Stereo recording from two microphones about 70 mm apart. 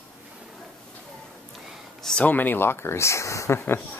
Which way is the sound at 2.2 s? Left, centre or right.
Left.